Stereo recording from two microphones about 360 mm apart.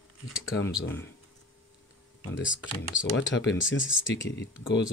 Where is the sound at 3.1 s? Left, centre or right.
Left.